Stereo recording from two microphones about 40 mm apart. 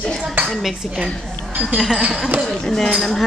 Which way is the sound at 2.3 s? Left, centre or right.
Right.